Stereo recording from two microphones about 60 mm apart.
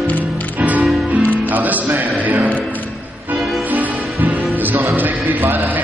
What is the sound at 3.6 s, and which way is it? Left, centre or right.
Music, right.